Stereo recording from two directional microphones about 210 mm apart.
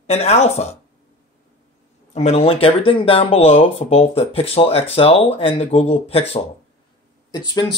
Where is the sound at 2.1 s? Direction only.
30° left (ahead or behind).